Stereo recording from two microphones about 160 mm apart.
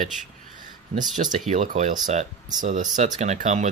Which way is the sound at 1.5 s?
45° right (ahead or behind).